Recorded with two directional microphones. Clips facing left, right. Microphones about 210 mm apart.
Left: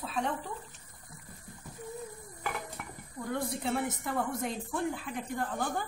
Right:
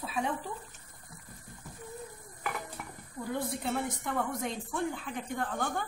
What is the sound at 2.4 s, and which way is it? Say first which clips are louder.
Dishes: even; centre (ahead or behind).